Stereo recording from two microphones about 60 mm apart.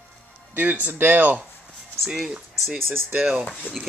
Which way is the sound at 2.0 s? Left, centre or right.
Centre.